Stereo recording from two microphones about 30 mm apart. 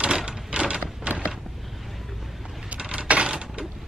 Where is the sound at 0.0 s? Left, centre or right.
Right.